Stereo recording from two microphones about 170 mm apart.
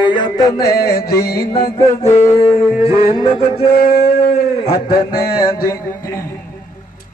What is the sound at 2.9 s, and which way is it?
Music, 20° right (ahead or behind).